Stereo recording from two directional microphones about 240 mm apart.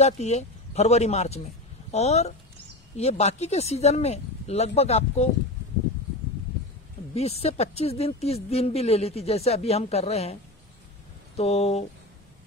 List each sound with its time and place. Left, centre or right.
0.0 s speech: left
7.2 s speech: left
11.3 s speech: left